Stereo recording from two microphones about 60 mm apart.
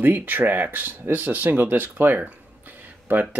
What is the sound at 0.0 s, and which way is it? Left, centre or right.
Speech, right.